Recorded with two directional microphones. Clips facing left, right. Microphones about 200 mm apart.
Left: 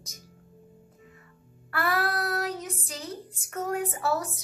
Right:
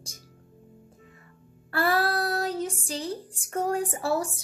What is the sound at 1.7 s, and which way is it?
Speech, 30° right (ahead or behind).